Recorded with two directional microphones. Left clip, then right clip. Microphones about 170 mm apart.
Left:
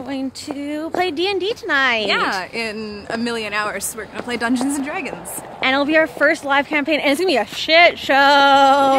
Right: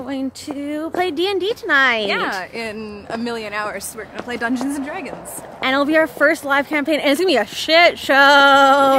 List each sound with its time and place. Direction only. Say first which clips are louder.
0.1 s speech: left 1 dB; 20° right (ahead or behind)
2.0 s a woman's voice: left 2 dB; 15° left (ahead or behind)
4.3 s speech: left 2 dB; 20° left (ahead or behind)
5.6 s speech: even; 20° right (ahead or behind)